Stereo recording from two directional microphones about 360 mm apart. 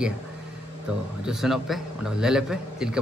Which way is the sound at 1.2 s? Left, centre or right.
Centre.